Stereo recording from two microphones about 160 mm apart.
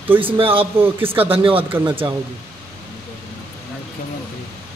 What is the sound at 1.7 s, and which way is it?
Speech, 10° right (ahead or behind).